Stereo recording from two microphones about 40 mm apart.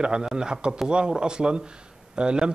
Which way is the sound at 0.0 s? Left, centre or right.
Centre.